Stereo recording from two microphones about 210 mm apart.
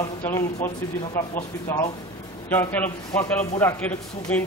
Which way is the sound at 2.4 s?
10° left (ahead or behind).